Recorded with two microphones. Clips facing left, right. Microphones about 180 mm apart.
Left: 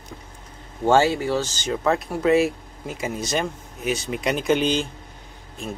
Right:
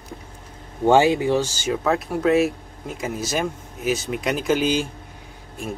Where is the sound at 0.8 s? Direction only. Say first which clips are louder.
Right 2 dB; 15° right (ahead or behind).